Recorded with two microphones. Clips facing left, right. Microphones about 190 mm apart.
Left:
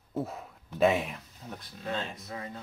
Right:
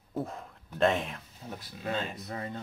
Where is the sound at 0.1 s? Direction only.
5° left (ahead or behind).